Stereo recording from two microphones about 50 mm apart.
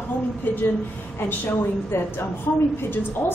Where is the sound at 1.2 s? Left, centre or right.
Left.